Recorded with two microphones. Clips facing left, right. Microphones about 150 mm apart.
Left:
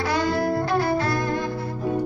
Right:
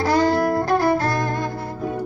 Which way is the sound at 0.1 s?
45° right (ahead or behind).